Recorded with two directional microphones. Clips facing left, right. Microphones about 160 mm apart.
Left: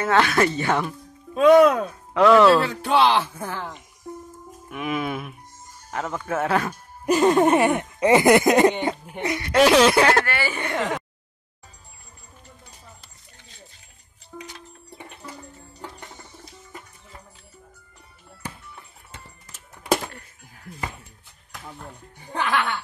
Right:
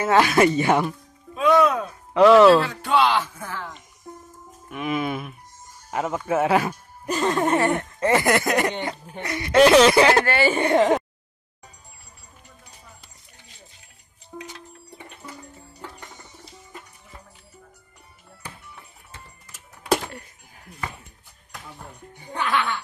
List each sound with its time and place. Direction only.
0.0 s speech: 10° right (ahead or behind)
1.3 s speech: 60° left (ahead or behind)
2.1 s speech: centre (ahead or behind)
2.8 s speech: 30° left (ahead or behind)
4.6 s speech: centre (ahead or behind)
5.9 s speech: 10° right (ahead or behind)
7.1 s speech: 15° left (ahead or behind)
9.5 s speech: centre (ahead or behind)
10.2 s speech: 25° right (ahead or behind)
10.7 s a sound: 35° right (ahead or behind)
14.3 s music: 15° right (ahead or behind)